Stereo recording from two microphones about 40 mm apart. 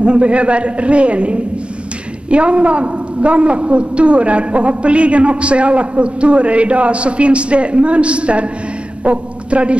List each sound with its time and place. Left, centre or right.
0.0 s a man's voice: right